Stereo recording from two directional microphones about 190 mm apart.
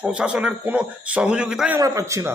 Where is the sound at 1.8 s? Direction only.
15° right (ahead or behind).